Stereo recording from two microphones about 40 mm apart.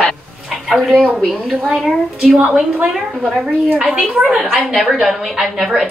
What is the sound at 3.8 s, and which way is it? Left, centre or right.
Speech, centre.